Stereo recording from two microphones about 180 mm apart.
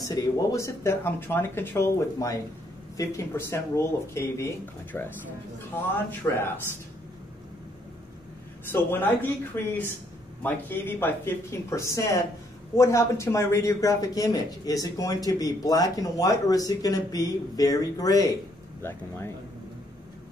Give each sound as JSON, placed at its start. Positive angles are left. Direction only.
{"t": 0.1, "sound": "speech", "side_deg": 15}
{"t": 8.7, "sound": "a man's voice", "side_deg": 10}